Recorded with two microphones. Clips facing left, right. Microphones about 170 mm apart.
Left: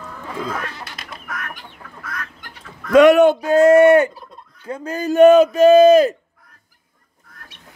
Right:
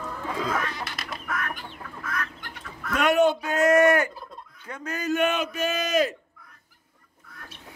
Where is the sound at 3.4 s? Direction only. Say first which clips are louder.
Left 9 dB; 30° left (ahead or behind).